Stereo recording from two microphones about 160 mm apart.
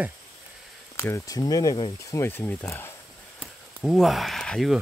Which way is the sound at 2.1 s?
15° left (ahead or behind).